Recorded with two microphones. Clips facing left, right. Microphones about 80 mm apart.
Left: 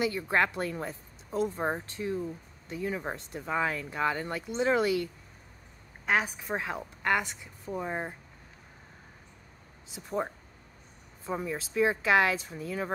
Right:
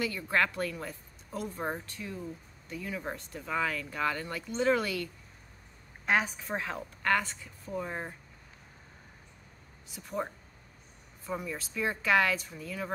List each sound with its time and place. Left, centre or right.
0.0 s speech: left
6.0 s a woman's voice: centre
9.8 s speech: left